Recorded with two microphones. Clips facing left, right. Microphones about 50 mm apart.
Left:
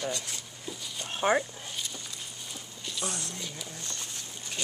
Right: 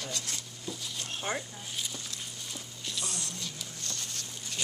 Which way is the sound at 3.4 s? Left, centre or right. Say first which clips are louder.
Left 2 dB; centre.